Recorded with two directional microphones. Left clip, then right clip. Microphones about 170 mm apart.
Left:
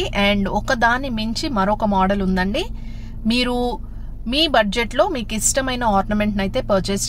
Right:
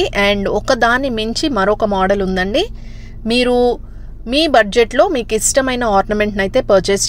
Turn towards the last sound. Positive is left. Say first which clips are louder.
# right 8 dB
turn(degrees=-25)  # may be behind; listen again after turning